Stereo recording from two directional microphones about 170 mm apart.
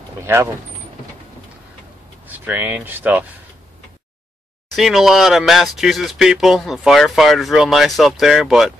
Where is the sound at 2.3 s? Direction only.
10° right (ahead or behind).